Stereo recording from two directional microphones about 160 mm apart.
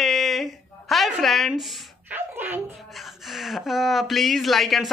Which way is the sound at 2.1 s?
10° right (ahead or behind).